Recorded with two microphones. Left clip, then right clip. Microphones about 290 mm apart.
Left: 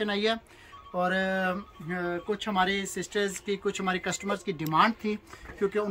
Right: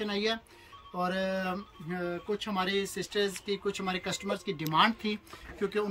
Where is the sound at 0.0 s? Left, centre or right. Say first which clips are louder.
Left 4 dB; centre.